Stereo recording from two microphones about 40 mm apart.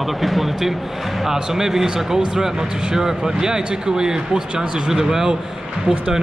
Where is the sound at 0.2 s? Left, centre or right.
Centre.